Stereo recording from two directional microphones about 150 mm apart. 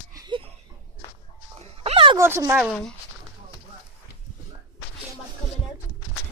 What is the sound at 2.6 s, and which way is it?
Speech, 5° left (ahead or behind).